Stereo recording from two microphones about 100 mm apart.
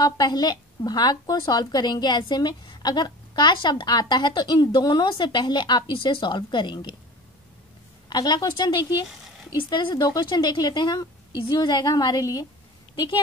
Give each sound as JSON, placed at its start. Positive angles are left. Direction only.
{"t": 0.0, "sound": "a woman's voice", "side_deg": 45}
{"t": 8.1, "sound": "a woman's voice", "side_deg": 40}